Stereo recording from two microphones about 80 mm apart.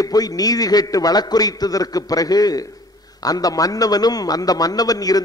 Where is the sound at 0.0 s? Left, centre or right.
Left.